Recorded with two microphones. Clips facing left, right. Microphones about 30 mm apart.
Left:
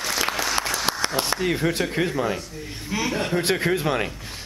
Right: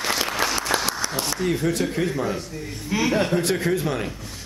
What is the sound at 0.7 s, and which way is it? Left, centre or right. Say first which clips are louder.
Applause: right 4 dB; right.